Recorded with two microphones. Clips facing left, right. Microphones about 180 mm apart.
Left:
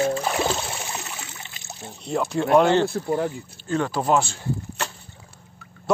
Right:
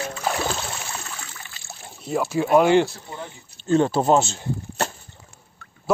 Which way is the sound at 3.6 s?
25° right (ahead or behind).